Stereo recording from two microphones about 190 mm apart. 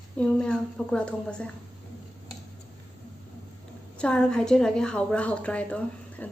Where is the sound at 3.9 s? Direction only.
5° left (ahead or behind).